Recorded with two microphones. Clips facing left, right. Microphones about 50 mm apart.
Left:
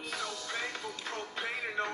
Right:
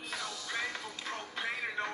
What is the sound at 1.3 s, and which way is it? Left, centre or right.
Music, centre.